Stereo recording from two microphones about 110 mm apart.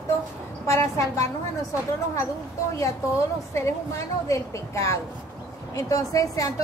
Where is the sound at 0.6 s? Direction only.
25° left (ahead or behind).